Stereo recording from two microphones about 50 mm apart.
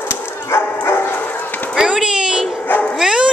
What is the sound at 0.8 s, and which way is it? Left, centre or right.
Bow-wow, left.